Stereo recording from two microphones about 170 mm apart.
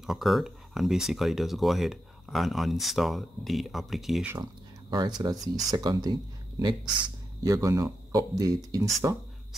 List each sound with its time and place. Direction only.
0.0 s speech: centre (ahead or behind)
4.9 s speech: 25° right (ahead or behind)